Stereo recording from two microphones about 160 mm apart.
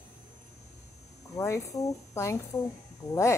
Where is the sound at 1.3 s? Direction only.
20° left (ahead or behind).